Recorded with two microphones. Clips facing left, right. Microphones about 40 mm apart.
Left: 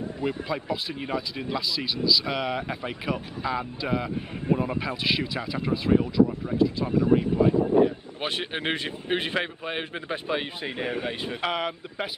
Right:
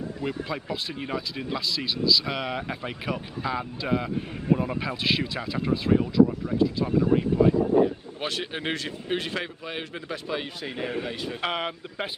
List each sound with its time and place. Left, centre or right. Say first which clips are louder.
0.2 s speech: left 3 dB; centre
8.2 s a man's voice: left 1 dB; left
11.4 s speech: left 1 dB; centre